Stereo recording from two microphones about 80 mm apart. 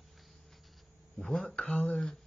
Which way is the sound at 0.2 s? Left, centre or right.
Centre.